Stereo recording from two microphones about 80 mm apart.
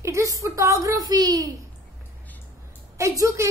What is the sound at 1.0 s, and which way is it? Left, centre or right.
Speech, right.